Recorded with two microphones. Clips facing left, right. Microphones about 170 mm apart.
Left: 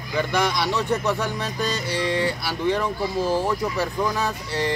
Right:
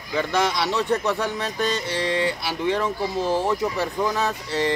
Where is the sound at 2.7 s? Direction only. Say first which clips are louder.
Even; centre (ahead or behind).